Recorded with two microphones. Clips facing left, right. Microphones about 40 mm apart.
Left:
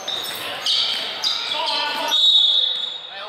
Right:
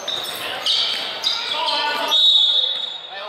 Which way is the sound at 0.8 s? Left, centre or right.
Centre.